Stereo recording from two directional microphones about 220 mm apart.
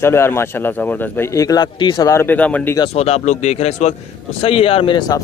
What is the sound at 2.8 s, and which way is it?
Speech, 25° left (ahead or behind).